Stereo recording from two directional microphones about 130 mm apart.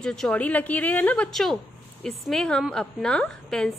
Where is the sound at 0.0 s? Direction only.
5° left (ahead or behind).